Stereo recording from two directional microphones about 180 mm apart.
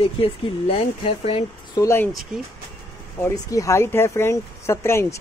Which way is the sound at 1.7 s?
15° left (ahead or behind).